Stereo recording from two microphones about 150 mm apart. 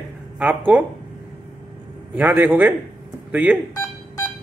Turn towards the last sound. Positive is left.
turn(degrees=15)  # may be behind; listen again after turning